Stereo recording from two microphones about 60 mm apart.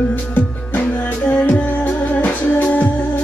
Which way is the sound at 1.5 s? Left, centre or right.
Left.